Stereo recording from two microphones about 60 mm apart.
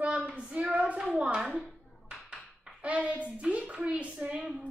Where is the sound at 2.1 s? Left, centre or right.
Centre.